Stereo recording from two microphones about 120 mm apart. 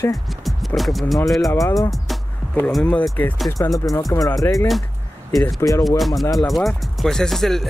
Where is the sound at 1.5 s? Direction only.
25° left (ahead or behind).